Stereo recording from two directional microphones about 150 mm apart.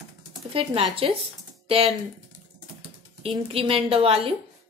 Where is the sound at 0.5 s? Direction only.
40° right (ahead or behind).